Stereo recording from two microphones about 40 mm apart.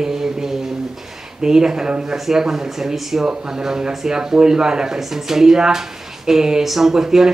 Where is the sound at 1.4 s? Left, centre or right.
Centre.